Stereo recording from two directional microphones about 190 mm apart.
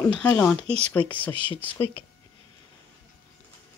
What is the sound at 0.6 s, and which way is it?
Speech, 35° right (ahead or behind).